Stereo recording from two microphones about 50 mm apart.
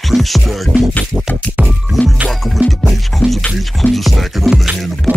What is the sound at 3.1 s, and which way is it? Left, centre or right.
Music, centre.